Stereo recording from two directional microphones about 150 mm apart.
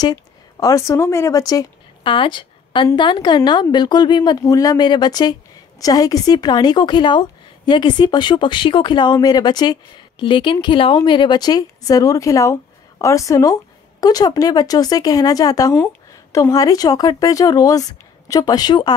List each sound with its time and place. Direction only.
0.0 s a woman's voice: 25° left (ahead or behind)